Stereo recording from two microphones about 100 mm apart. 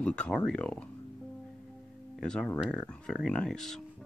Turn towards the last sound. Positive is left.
turn(degrees=5)  # may be behind; listen again after turning